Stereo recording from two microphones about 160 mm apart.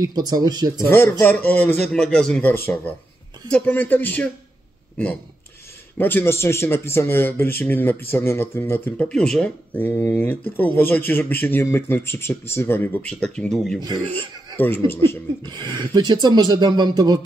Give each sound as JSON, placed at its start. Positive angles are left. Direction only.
{"t": 0.1, "sound": "speech", "side_deg": -25}
{"t": 0.8, "sound": "speech", "side_deg": 15}
{"t": 5.9, "sound": "speech", "side_deg": 10}
{"t": 13.7, "sound": "speech", "side_deg": -25}
{"t": 14.9, "sound": "speech", "side_deg": 15}
{"t": 15.4, "sound": "speech", "side_deg": -25}